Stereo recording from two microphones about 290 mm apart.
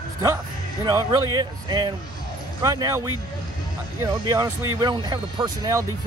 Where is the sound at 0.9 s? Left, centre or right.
Centre.